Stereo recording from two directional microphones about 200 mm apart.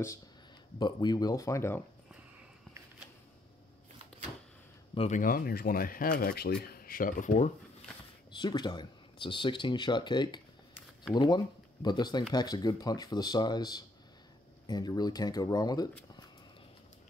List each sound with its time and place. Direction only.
0.7 s speech: 20° left (ahead or behind)
4.9 s speech: 35° left (ahead or behind)
8.4 s speech: 20° left (ahead or behind)